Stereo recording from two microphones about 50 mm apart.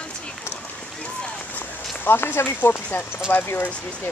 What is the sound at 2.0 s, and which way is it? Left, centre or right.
Speech, left.